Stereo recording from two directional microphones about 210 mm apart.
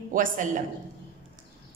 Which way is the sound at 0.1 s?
40° right (ahead or behind).